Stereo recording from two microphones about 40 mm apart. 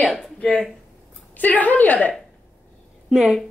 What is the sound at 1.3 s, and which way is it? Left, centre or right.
Speech, left.